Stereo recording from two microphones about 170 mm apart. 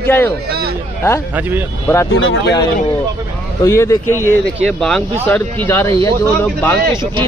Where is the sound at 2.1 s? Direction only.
90° left.